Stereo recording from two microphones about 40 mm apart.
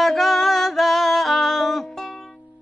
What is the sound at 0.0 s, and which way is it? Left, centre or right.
Music, centre.